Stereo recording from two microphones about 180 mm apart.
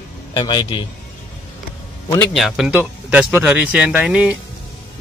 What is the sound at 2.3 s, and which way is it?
Speech, centre (ahead or behind).